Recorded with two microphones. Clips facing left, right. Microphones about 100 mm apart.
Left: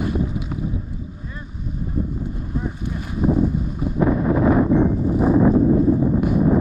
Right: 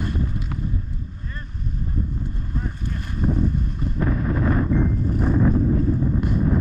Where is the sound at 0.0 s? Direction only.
5° left (ahead or behind).